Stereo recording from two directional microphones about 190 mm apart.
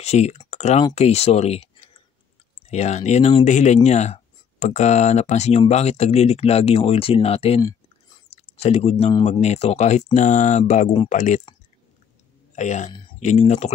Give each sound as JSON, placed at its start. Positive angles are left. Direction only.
{"t": 0.0, "sound": "speech", "side_deg": 35}
{"t": 2.7, "sound": "speech", "side_deg": 35}
{"t": 12.5, "sound": "speech", "side_deg": 40}